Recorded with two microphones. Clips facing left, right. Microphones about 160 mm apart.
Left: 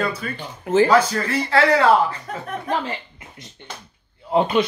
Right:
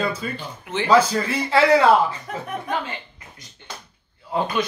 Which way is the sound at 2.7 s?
30° left (ahead or behind).